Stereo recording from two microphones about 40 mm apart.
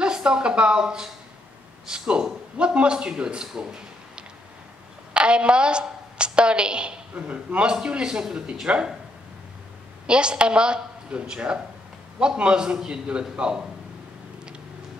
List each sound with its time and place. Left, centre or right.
0.0 s a woman's voice: right
10.0 s a woman's voice: right